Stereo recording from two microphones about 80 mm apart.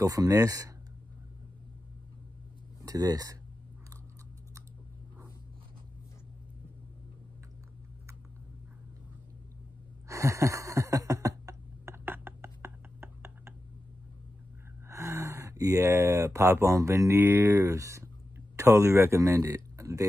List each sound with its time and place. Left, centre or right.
0.0 s speech: right
2.8 s speech: right
10.0 s a sound: right
14.9 s speech: right
17.2 s speech: right